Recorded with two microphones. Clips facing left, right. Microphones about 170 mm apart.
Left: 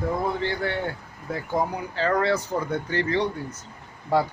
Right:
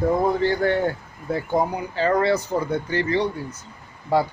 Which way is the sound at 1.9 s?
15° right (ahead or behind).